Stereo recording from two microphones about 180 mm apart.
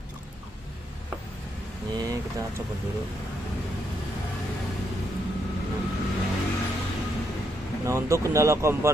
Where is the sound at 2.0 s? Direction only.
20° right (ahead or behind).